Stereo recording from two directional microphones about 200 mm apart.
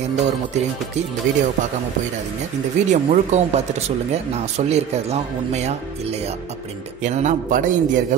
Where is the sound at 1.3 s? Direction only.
40° right (ahead or behind).